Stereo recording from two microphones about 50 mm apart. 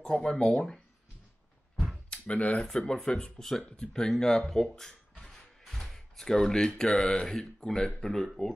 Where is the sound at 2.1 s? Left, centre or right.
Left.